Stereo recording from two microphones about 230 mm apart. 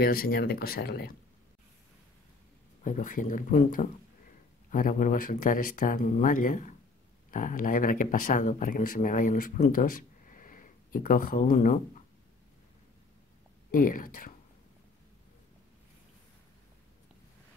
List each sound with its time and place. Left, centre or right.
0.0 s speech: left
2.8 s speech: left
13.7 s speech: left